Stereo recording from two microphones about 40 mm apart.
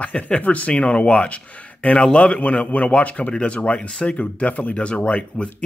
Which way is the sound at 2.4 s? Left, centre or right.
Left.